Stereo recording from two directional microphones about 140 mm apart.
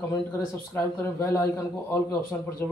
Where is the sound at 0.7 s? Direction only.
20° left (ahead or behind).